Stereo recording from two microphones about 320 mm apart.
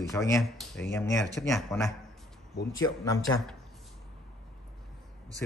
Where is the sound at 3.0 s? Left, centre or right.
Centre.